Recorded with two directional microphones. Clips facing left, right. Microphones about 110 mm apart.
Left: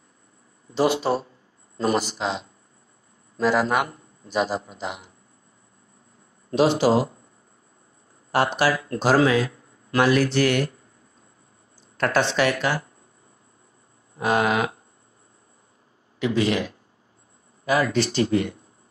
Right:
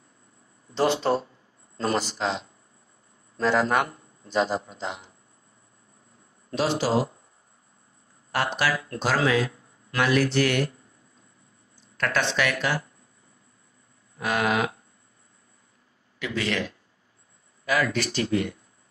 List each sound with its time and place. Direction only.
0.7 s a man's voice: 10° left (ahead or behind)
6.5 s a man's voice: 15° left (ahead or behind)
8.3 s speech: 35° left (ahead or behind)
12.0 s speech: 35° left (ahead or behind)
14.1 s speech: 30° left (ahead or behind)
16.2 s speech: 20° left (ahead or behind)